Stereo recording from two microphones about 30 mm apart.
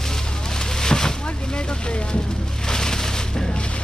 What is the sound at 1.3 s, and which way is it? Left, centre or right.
Speech, left.